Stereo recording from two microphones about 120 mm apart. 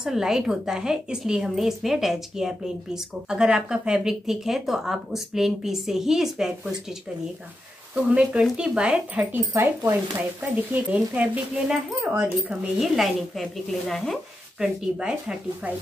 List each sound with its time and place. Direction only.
0.0 s a woman's voice: 5° right (ahead or behind)
12.8 s a woman's voice: centre (ahead or behind)
14.6 s speech: 5° right (ahead or behind)